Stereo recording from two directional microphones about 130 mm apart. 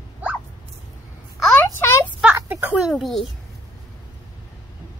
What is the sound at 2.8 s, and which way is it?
Speech, centre (ahead or behind).